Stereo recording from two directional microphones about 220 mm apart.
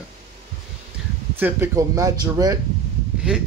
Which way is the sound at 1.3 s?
10° right (ahead or behind).